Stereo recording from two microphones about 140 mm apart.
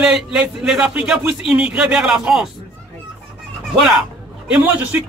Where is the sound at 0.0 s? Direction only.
5° right (ahead or behind).